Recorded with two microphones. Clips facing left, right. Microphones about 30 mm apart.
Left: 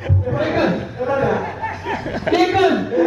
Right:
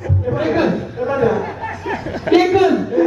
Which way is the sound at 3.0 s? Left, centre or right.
Centre.